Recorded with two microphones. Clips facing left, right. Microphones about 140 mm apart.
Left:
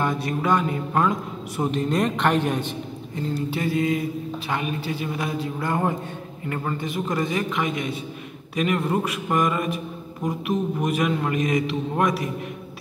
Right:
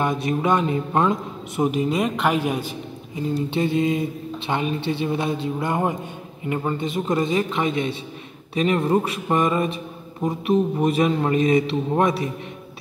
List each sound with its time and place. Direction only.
0.0 s mantra: 20° right (ahead or behind)
1.6 s a woman's voice: 10° right (ahead or behind)
3.4 s mantra: 25° right (ahead or behind)